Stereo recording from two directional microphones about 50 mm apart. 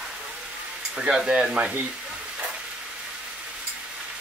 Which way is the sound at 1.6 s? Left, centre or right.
Right.